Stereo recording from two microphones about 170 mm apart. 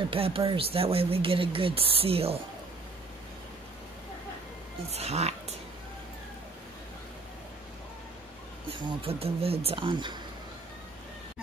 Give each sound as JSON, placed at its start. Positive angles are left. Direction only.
{"t": 0.1, "sound": "speech", "side_deg": -35}
{"t": 4.9, "sound": "speech", "side_deg": -40}
{"t": 8.6, "sound": "speech", "side_deg": -35}